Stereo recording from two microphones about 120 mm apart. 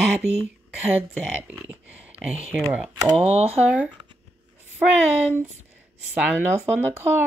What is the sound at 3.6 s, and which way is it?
Speech, 10° right (ahead or behind).